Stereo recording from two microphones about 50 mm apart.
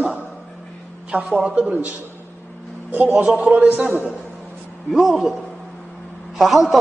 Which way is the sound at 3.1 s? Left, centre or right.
Right.